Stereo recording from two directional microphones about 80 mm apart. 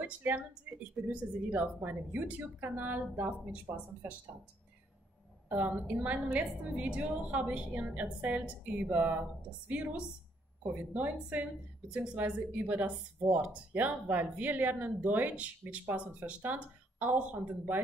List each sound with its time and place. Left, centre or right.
0.0 s speech: right
5.5 s a woman's voice: right